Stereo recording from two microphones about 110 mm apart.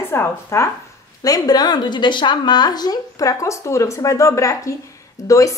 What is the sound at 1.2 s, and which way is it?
A woman's voice, 35° left (ahead or behind).